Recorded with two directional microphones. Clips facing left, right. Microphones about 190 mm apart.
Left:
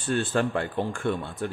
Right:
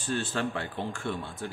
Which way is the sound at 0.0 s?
55° left (ahead or behind).